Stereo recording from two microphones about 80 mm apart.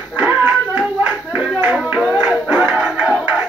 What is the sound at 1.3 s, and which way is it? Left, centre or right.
Music, centre.